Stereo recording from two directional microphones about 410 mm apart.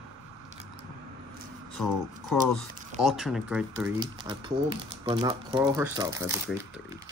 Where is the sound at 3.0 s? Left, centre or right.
Centre.